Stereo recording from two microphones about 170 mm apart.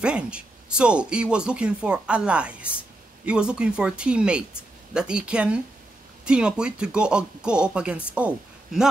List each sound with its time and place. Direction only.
0.0 s speech: 5° right (ahead or behind)